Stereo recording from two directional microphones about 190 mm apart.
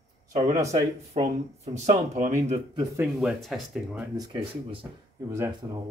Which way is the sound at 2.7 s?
15° right (ahead or behind).